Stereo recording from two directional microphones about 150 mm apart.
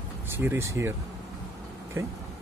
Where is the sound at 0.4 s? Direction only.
15° right (ahead or behind).